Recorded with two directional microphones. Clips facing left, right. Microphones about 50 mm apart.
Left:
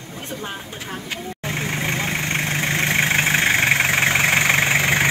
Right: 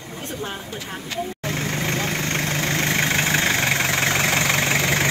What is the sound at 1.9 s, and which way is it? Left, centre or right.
Vehicle, left.